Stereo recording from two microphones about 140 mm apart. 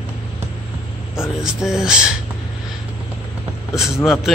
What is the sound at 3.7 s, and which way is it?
Speech, 5° right (ahead or behind).